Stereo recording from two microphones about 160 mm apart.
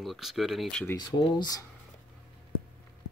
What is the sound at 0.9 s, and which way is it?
Speech, 25° left (ahead or behind).